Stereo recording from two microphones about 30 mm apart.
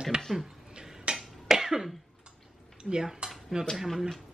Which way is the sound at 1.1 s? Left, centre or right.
Right.